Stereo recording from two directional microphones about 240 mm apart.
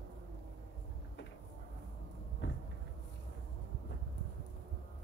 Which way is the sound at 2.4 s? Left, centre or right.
Left.